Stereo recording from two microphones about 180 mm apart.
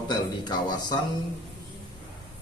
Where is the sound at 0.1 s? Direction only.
25° left (ahead or behind).